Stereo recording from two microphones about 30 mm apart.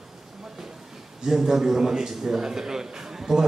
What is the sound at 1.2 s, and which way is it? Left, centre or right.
A man's voice, centre.